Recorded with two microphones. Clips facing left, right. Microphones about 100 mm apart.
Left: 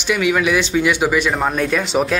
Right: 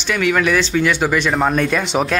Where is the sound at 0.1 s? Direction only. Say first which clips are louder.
Even; 10° left (ahead or behind).